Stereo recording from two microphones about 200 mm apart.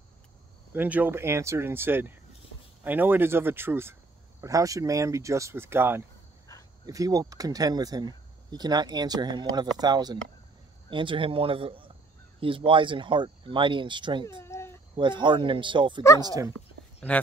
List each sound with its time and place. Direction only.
0.7 s speech: 10° right (ahead or behind)
14.4 s cat: 15° left (ahead or behind)
15.0 s speech: 25° right (ahead or behind)
16.5 s a sound: 5° left (ahead or behind)